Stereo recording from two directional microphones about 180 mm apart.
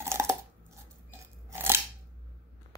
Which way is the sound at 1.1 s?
10° right (ahead or behind).